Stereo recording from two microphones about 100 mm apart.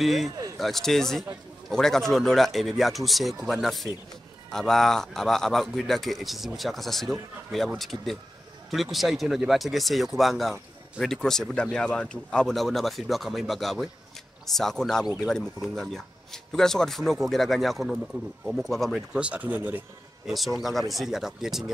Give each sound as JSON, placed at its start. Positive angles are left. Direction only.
{"t": 0.0, "sound": "speech", "side_deg": 0}
{"t": 19.1, "sound": "speech", "side_deg": -15}
{"t": 20.2, "sound": "speech", "side_deg": 0}